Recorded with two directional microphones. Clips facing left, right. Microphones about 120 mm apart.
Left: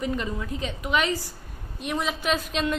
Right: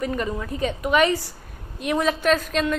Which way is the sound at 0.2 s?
50° right (ahead or behind).